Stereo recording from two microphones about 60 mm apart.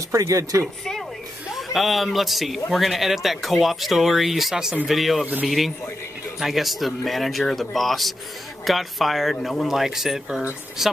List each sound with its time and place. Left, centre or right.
0.1 s speech: right
1.5 s a man's voice: centre
6.4 s speech: centre